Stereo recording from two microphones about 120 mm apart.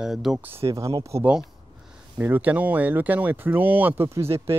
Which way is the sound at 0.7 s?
25° right (ahead or behind).